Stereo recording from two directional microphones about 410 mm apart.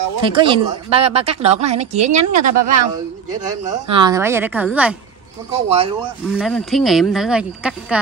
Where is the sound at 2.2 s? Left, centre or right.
Right.